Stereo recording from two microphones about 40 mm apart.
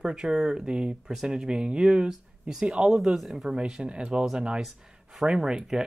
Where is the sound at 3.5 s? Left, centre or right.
Right.